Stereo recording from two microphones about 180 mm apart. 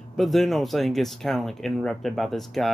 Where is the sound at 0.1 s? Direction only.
Centre (ahead or behind).